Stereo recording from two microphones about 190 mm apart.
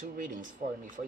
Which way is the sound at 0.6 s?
40° right (ahead or behind).